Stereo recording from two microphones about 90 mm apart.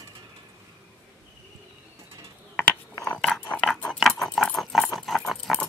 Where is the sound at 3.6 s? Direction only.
5° left (ahead or behind).